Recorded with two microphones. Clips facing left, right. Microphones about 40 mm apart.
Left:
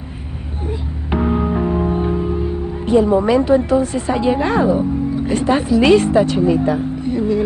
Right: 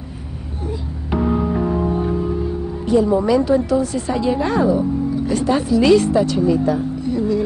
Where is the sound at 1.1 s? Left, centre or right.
Left.